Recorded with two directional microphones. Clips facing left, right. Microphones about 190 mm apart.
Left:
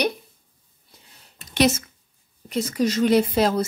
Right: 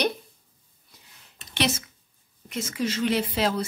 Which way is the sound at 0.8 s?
40° left (ahead or behind).